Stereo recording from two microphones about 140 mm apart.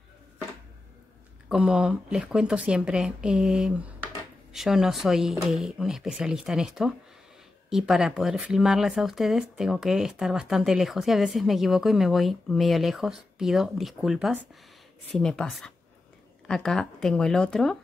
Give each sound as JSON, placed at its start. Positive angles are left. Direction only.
{"t": 1.5, "sound": "speech", "side_deg": -5}